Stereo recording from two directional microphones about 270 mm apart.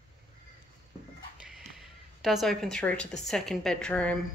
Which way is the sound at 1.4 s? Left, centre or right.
Centre.